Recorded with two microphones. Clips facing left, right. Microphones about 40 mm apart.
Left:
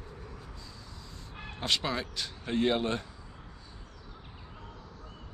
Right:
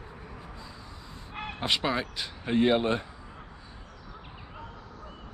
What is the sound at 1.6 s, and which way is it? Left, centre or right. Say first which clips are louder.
Speech: right 3 dB; centre.